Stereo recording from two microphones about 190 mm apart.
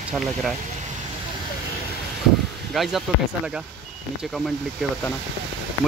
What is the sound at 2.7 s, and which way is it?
Speech, centre (ahead or behind).